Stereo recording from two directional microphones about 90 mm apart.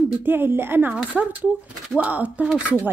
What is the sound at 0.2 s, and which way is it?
Speech, 25° right (ahead or behind).